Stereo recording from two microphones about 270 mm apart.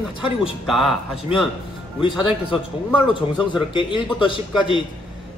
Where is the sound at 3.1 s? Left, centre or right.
Centre.